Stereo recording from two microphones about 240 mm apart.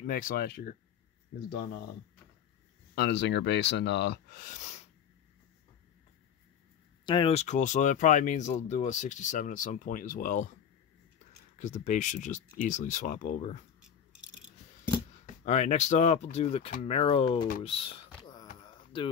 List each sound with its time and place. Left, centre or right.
0.0 s speech: left
2.9 s speech: left
7.1 s speech: left
11.5 s speech: left
15.2 s speech: left
17.6 s a sound: left